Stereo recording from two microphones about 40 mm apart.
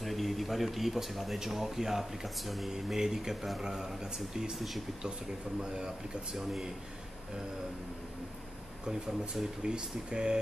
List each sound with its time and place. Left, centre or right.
0.0 s speech: centre
2.7 s speech: centre
5.6 s speech: centre
6.3 s speech: centre
8.8 s speech: centre